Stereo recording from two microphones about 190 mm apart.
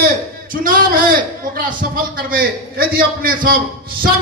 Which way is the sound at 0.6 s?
45° right (ahead or behind).